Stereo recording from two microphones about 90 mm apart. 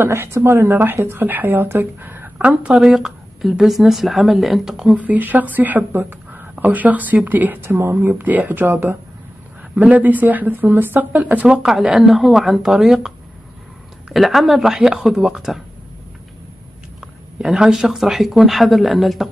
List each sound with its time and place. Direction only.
0.0 s a woman's voice: 25° right (ahead or behind); by 4.9 s 5° right (ahead or behind)
4.9 s a woman's voice: 20° right (ahead or behind)
14.1 s speech: centre (ahead or behind)
17.0 s speech: 5° right (ahead or behind)